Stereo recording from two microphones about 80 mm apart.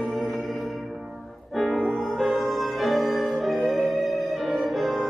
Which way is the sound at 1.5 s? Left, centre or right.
Centre.